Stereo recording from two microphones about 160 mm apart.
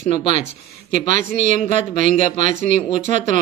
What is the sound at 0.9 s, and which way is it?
Speech, 55° right (ahead or behind).